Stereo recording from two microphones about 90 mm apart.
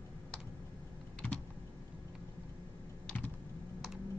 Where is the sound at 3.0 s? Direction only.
20° left (ahead or behind).